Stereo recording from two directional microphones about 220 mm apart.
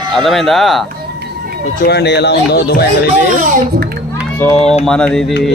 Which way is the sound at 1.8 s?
50° left (ahead or behind).